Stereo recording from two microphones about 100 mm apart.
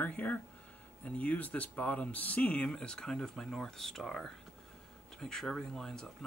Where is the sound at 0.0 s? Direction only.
15° left (ahead or behind).